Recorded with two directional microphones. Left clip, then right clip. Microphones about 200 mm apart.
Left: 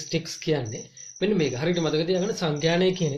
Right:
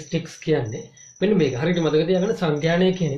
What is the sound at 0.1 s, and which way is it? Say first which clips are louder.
Speech: right 4 dB; 40° left (ahead or behind).